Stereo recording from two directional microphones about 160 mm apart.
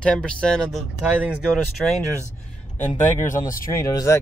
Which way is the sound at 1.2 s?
10° right (ahead or behind).